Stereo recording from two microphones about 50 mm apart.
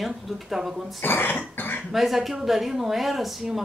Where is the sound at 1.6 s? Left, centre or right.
Left.